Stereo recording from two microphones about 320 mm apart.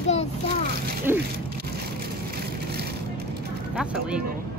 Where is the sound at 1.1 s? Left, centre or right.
Centre.